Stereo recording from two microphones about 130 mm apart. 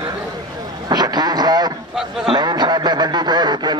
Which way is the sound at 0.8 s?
30° right (ahead or behind).